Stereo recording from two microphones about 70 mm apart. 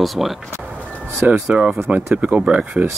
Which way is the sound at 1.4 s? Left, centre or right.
Centre.